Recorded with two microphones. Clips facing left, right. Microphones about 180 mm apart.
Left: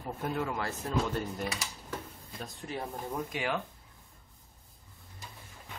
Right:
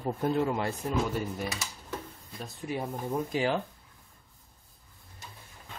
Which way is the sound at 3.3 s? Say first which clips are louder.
Right 6 dB; 30° right (ahead or behind).